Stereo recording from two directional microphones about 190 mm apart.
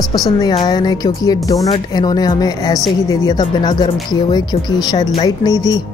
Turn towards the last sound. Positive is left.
turn(degrees=20)  # may be behind; listen again after turning